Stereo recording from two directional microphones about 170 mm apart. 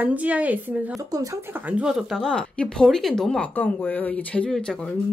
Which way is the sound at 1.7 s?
5° right (ahead or behind).